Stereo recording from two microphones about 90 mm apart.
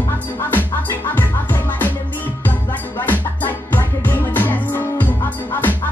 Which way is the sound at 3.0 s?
20° left (ahead or behind).